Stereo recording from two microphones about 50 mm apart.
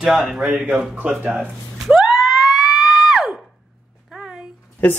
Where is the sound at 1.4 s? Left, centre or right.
Centre.